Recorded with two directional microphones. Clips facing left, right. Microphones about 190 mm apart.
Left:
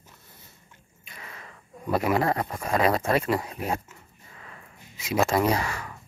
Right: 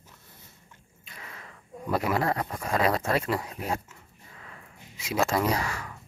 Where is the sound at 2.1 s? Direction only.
10° left (ahead or behind).